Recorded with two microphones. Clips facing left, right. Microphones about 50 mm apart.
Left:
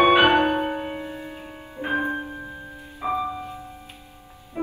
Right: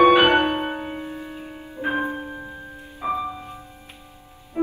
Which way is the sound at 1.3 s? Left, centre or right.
Centre.